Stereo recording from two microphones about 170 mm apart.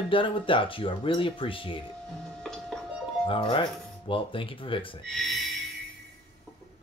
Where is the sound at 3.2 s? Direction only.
30° left (ahead or behind).